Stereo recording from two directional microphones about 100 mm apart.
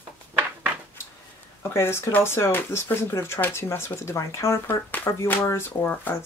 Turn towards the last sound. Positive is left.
turn(degrees=20)  # may be behind; listen again after turning